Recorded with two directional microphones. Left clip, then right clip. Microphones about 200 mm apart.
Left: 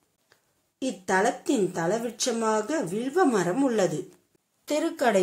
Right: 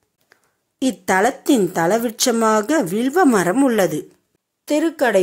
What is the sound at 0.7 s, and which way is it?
Speech, 45° right (ahead or behind).